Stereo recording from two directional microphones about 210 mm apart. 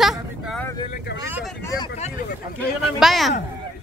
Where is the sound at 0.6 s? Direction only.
15° left (ahead or behind).